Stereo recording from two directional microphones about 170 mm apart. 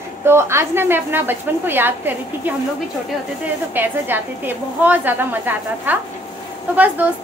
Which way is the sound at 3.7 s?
10° right (ahead or behind).